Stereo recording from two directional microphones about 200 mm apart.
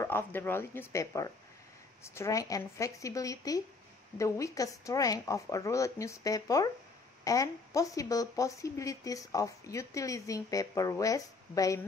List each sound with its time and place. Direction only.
0.0 s speech: 10° left (ahead or behind)